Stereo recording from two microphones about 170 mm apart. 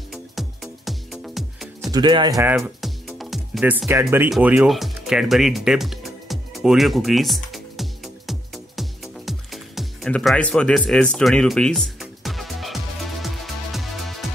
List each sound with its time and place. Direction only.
0.1 s music: centre (ahead or behind)
1.9 s speech: 25° right (ahead or behind)
2.4 s speech: 15° right (ahead or behind)
2.8 s music: centre (ahead or behind)